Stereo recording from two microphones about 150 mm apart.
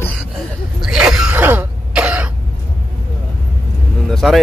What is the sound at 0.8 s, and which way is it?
Throat clearing, 5° right (ahead or behind).